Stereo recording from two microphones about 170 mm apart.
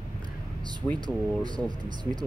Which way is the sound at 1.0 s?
25° right (ahead or behind).